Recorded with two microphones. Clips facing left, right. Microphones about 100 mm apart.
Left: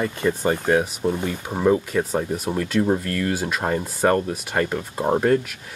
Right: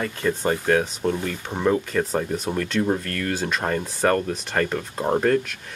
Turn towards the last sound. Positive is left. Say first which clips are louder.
# left 1 dB
turn(degrees=10)  # may be behind; listen again after turning